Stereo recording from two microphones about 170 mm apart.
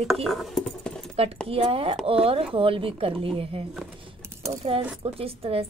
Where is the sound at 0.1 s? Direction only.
Centre (ahead or behind).